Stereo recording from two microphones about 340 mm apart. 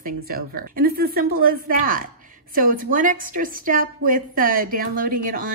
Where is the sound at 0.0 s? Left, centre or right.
Right.